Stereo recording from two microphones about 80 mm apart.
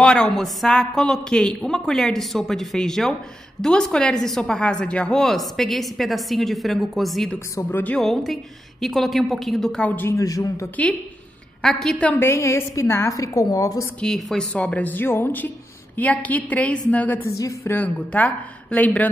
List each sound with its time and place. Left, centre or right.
0.0 s a woman's voice: centre
7.3 s speech: left
8.0 s a woman's voice: centre
10.0 s a woman's voice: left
11.6 s a woman's voice: centre
12.2 s a woman's voice: left
13.9 s a woman's voice: centre